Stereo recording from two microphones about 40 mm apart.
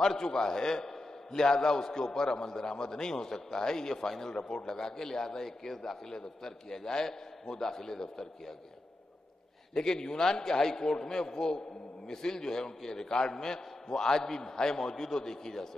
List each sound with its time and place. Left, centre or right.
0.0 s a man's voice: centre
9.8 s a man's voice: centre